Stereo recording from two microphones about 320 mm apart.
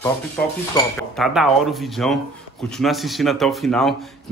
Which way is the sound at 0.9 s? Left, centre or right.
Centre.